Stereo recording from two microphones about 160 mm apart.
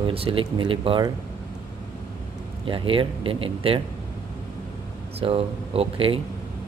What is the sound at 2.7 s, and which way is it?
Speech, 35° right (ahead or behind).